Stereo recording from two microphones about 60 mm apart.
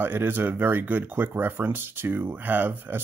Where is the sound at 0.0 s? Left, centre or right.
Right.